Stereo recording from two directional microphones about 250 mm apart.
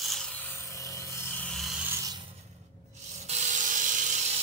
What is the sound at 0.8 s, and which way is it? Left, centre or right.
Rub, centre.